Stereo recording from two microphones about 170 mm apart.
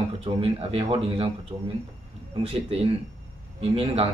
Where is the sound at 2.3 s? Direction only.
35° right (ahead or behind).